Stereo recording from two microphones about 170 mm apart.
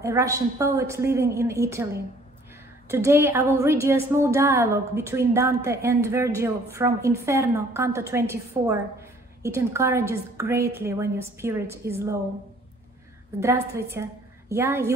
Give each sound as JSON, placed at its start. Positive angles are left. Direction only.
{"t": 0.0, "sound": "a woman's voice", "side_deg": -20}
{"t": 2.9, "sound": "a woman's voice", "side_deg": -15}
{"t": 13.4, "sound": "a woman's voice", "side_deg": -15}